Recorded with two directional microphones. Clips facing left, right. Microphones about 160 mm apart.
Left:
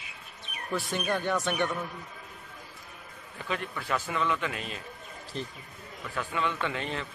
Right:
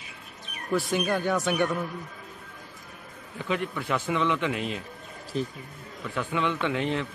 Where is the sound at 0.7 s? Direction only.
5° right (ahead or behind).